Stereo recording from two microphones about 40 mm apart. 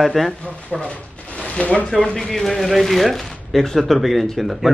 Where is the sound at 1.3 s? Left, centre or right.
Left.